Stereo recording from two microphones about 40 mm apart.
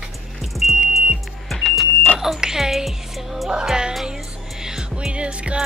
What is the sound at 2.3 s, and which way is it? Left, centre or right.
Music, centre.